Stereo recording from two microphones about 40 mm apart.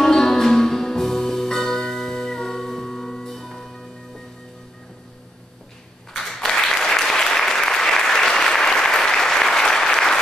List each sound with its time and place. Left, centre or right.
0.0 s music: centre
6.1 s applause: centre